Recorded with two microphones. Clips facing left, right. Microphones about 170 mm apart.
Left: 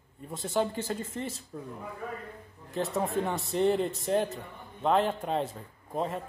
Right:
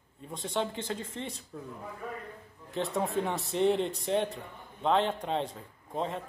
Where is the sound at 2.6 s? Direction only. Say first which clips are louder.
Left 1 dB; centre (ahead or behind).